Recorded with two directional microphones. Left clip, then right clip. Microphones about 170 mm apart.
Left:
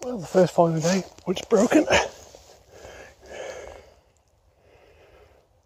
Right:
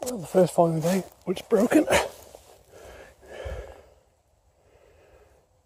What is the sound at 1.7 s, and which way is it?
Speech, 15° right (ahead or behind).